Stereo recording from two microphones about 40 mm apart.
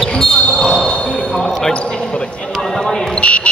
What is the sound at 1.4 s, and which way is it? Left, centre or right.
Basketball bounce, centre.